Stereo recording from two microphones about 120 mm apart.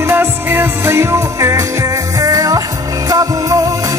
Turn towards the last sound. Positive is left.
turn(degrees=-30)  # may be behind; listen again after turning